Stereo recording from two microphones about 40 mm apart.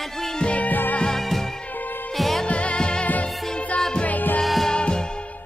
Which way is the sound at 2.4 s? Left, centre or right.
Left.